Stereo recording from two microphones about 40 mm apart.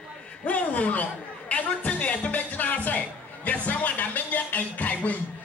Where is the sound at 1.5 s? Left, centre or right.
Left.